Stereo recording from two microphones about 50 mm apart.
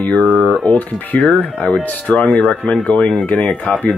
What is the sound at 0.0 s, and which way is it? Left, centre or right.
Speech, left.